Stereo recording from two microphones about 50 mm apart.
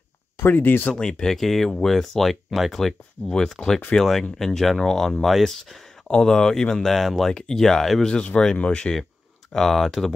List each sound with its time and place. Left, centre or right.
0.5 s speech: left
0.9 s speech: centre
6.0 s speech: centre
8.0 s speech: left
9.5 s speech: centre